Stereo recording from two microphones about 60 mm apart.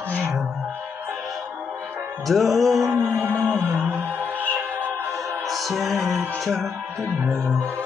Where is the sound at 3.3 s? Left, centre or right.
Right.